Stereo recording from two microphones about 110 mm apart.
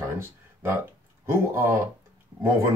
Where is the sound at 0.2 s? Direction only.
25° right (ahead or behind).